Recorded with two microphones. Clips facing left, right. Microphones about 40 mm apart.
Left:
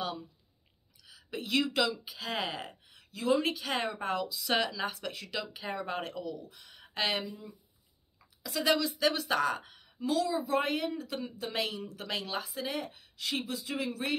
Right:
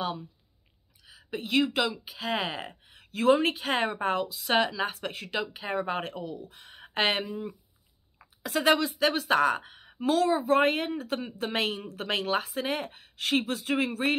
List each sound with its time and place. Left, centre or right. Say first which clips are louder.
1.0 s speech: right 3 dB; right
3.1 s speech: right 6 dB; right